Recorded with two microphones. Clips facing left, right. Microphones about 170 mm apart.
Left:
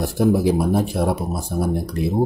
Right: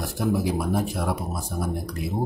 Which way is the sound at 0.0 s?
30° left (ahead or behind).